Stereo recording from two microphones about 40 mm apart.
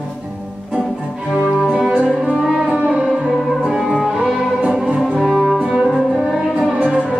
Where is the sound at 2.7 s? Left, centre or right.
Right.